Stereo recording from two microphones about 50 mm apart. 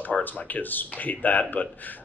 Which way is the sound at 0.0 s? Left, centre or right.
Left.